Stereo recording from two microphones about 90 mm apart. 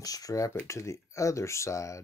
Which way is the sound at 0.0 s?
40° left (ahead or behind).